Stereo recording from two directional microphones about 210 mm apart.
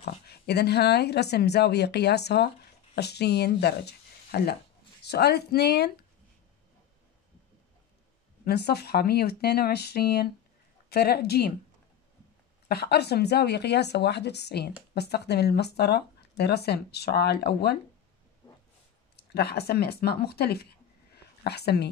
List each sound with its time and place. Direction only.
0.0 s speech: 50° left (ahead or behind)
8.5 s speech: 50° left (ahead or behind)
12.6 s speech: 50° left (ahead or behind)
19.1 s speech: 50° left (ahead or behind)
21.1 s a sound: 50° left (ahead or behind)